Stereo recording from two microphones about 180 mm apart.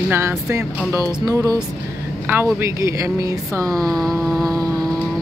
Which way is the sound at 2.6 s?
15° right (ahead or behind).